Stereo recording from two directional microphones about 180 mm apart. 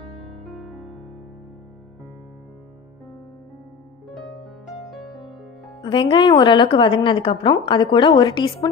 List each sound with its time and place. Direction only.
0.2 s music: centre (ahead or behind)
4.9 s music: centre (ahead or behind)
5.8 s a woman's voice: 30° left (ahead or behind)